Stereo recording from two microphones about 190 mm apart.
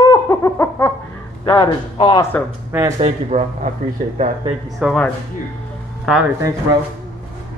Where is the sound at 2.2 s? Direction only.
10° left (ahead or behind).